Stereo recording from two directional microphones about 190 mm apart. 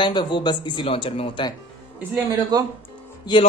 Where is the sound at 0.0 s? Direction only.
25° left (ahead or behind).